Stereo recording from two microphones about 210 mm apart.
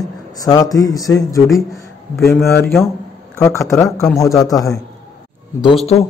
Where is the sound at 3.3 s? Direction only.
15° left (ahead or behind).